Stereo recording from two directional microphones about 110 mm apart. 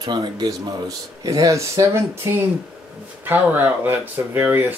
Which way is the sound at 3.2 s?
15° right (ahead or behind).